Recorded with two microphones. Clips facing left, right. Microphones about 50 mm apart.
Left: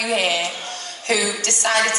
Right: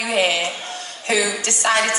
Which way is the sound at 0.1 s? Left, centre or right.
Centre.